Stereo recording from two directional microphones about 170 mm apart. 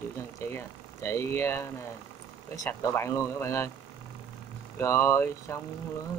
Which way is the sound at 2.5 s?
15° left (ahead or behind).